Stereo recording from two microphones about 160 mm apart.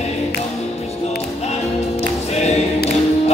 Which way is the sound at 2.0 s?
40° left (ahead or behind).